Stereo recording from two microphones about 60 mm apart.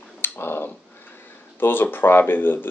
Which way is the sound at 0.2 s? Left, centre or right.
Left.